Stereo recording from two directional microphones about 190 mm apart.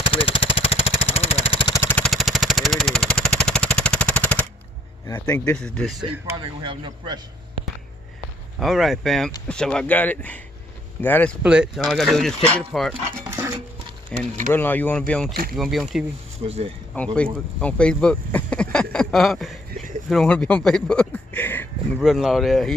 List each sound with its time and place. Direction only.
0.1 s vehicle: 30° left (ahead or behind)
1.8 s vehicle: 10° left (ahead or behind)
5.0 s speech: 20° left (ahead or behind)
5.3 s speech: 5° left (ahead or behind)
6.3 s speech: 25° right (ahead or behind)
8.5 s speech: centre (ahead or behind)
11.4 s speech: 5° right (ahead or behind)
14.1 s speech: 5° left (ahead or behind)
16.4 s speech: 30° right (ahead or behind)
16.9 s speech: 5° left (ahead or behind)
22.0 s speech: centre (ahead or behind)